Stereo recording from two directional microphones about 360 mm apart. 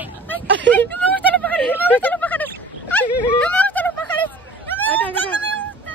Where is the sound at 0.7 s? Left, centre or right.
Centre.